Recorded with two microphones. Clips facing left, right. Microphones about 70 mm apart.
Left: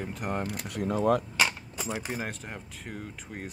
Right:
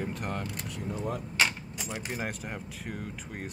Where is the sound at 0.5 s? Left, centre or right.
Left.